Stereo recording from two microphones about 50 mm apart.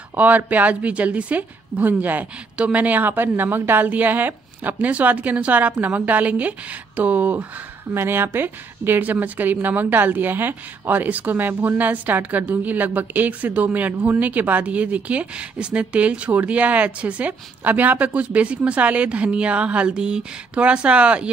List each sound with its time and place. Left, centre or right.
0.1 s a woman's voice: right
7.9 s a woman's voice: right